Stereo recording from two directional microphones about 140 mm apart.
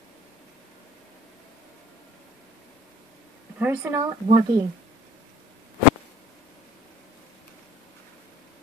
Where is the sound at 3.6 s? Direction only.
15° right (ahead or behind).